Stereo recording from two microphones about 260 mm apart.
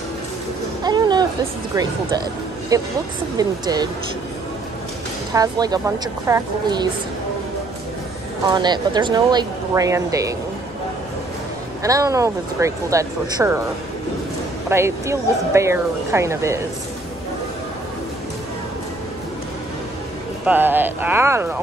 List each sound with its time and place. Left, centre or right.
0.8 s a sound: centre
1.8 s speech: centre
5.3 s speech: centre
8.5 s speech: centre
11.8 s speech: centre
14.7 s speech: centre
20.4 s speech: centre